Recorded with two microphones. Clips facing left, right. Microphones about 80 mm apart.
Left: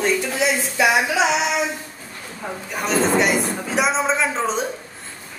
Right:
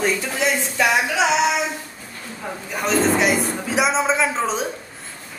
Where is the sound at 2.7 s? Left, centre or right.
Centre.